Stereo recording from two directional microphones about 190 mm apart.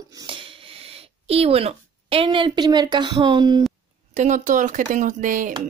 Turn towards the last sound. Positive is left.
turn(degrees=-45)  # may be behind; listen again after turning